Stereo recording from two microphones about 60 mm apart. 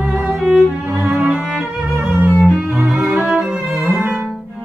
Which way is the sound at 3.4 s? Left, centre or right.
Centre.